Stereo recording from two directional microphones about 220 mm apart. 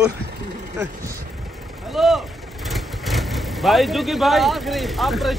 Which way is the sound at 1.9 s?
Centre (ahead or behind).